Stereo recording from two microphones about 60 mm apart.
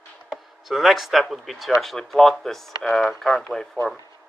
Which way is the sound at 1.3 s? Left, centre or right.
Centre.